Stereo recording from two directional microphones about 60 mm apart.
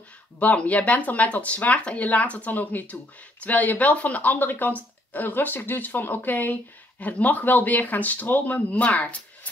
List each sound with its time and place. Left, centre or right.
0.4 s speech: left